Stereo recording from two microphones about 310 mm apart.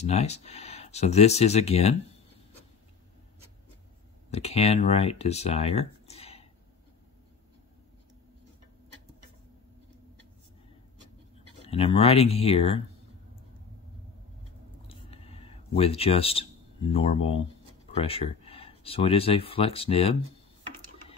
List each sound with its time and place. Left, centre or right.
0.0 s speech: left
4.3 s speech: centre
11.6 s speech: centre
14.9 s a sound: centre
17.8 s speech: centre